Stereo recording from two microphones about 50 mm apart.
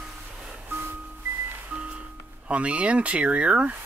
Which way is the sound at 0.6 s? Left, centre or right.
Right.